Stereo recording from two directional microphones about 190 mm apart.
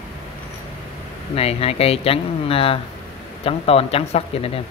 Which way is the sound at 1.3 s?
30° left (ahead or behind).